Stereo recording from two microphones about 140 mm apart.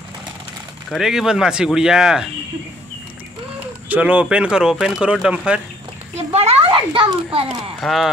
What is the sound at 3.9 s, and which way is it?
Speech, 10° right (ahead or behind).